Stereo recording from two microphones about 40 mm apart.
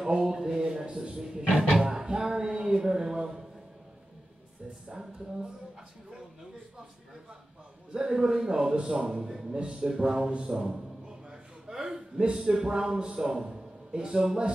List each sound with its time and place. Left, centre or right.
0.0 s a man's voice: centre
1.7 s a sound: centre
4.8 s speech: centre
7.9 s a man's voice: centre
11.6 s a sound: centre
12.4 s a man's voice: centre